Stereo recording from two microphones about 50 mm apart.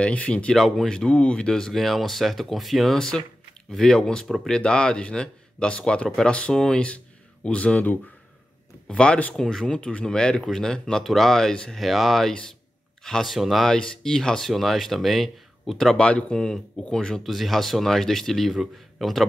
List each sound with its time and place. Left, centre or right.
0.0 s speech: left
0.6 s speech: centre
0.8 s speech: centre
1.5 s speech: centre; by 6.5 s left
6.5 s speech: centre
7.4 s speech: left
8.8 s speech: centre
11.8 s speech: centre
13.7 s speech: centre
16.0 s speech: left
17.2 s speech: centre